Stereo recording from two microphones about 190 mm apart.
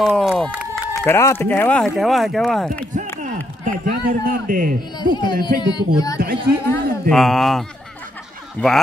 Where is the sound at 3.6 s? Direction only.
50° right (ahead or behind).